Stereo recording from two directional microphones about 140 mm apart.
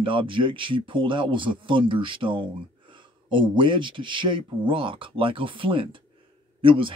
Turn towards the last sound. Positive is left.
turn(degrees=-40)  # may be behind; listen again after turning